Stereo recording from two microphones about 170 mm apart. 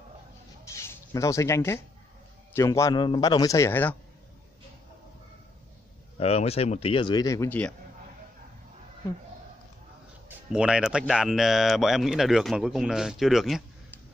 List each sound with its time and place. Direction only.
0.7 s a man's voice: 15° left (ahead or behind)
6.1 s speech: 35° left (ahead or behind); by 7.7 s 10° left (ahead or behind)
10.2 s speech: 5° right (ahead or behind)